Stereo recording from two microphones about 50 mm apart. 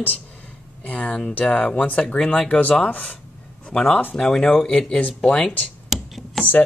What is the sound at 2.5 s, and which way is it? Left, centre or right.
Speech, left.